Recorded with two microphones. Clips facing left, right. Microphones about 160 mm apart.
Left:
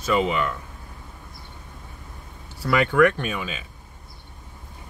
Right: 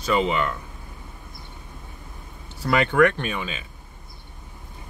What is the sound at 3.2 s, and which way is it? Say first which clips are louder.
Speech: even; 5° left (ahead or behind).